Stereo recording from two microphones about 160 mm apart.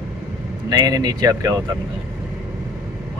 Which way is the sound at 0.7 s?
25° right (ahead or behind).